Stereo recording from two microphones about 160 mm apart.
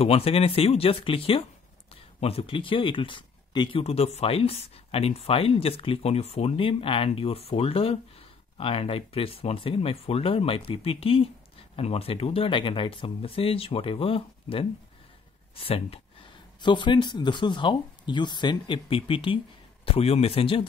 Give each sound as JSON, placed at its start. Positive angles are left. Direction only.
{"t": 0.0, "sound": "speech", "side_deg": 35}